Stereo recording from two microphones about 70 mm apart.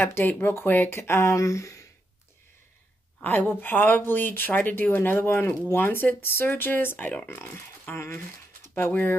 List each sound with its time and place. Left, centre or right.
0.0 s speech: left
3.2 s speech: left